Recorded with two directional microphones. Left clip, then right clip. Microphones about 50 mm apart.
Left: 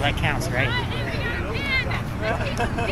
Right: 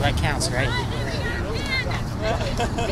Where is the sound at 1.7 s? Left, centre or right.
Left.